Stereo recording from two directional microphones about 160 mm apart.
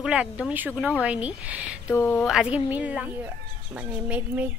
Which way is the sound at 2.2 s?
5° right (ahead or behind).